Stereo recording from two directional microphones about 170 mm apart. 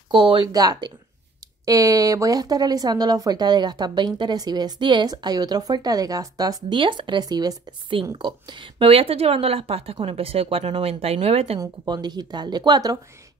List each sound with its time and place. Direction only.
0.1 s speech: 30° right (ahead or behind)
11.6 s speech: 25° right (ahead or behind)